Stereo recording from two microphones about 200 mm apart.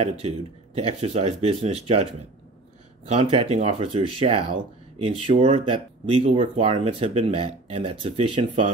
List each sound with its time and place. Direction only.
0.7 s speech: 30° right (ahead or behind)
3.1 s speech: 30° right (ahead or behind)